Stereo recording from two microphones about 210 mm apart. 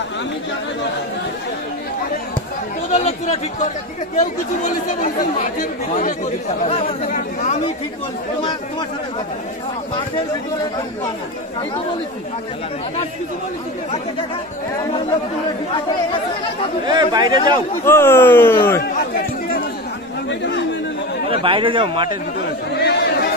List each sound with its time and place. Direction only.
2.9 s speech: 30° left (ahead or behind)
16.8 s a man's voice: 20° right (ahead or behind)
17.8 s speech: 10° left (ahead or behind)
20.2 s speech: 55° left (ahead or behind)
21.3 s a man's voice: 25° right (ahead or behind)
22.8 s chatter: 50° left (ahead or behind)